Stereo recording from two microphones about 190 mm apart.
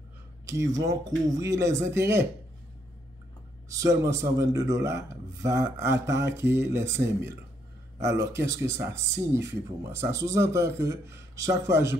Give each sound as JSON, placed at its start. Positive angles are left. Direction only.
{"t": 0.5, "sound": "speech", "side_deg": -15}
{"t": 3.6, "sound": "speech", "side_deg": -15}